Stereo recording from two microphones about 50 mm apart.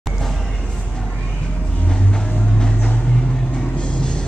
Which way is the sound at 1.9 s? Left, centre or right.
Centre.